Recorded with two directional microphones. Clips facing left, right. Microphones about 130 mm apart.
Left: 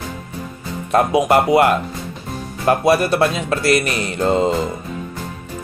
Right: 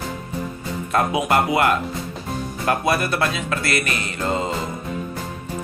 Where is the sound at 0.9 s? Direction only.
40° left (ahead or behind).